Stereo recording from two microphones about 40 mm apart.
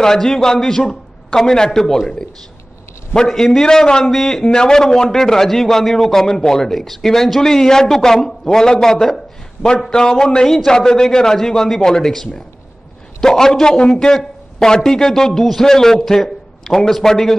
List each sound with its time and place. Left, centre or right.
0.0 s a man's voice: centre
3.3 s a man's voice: centre
4.0 s a man's voice: centre
4.4 s a man's voice: centre
9.0 s a sound: centre
9.8 s a man's voice: centre
16.1 s a sound: centre
16.9 s a man's voice: centre